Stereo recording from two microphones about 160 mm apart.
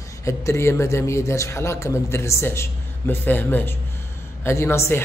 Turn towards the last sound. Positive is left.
turn(degrees=15)  # may be behind; listen again after turning